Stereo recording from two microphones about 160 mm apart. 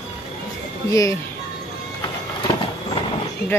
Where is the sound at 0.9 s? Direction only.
20° left (ahead or behind).